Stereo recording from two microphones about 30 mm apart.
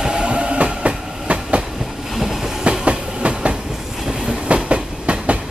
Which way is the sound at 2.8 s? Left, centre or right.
Right.